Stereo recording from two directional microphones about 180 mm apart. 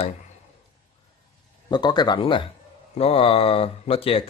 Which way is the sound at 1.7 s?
25° left (ahead or behind).